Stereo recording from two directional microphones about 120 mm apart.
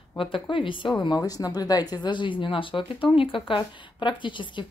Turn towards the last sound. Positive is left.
turn(degrees=40)  # may be behind; listen again after turning